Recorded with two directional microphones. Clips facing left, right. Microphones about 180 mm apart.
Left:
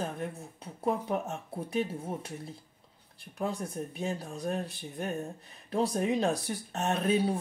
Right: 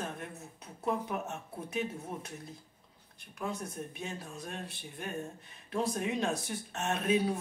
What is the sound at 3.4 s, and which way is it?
Speech, 35° left (ahead or behind).